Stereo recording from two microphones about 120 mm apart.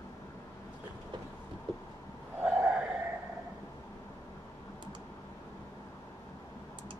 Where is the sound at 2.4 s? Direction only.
10° right (ahead or behind).